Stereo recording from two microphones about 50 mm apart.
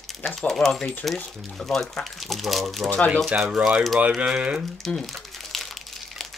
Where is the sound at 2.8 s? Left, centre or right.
Left.